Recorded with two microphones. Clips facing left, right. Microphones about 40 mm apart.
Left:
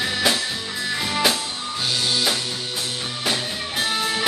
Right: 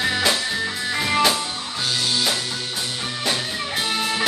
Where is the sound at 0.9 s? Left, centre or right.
Right.